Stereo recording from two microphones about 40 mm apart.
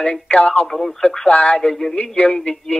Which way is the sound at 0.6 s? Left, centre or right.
Centre.